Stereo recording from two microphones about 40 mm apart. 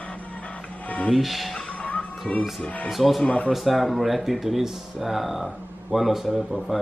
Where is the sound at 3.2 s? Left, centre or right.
Left.